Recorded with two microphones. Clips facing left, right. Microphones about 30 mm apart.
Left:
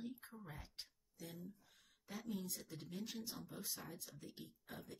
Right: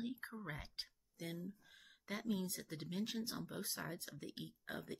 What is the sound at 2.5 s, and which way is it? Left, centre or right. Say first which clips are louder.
Speech: right 5 dB; right.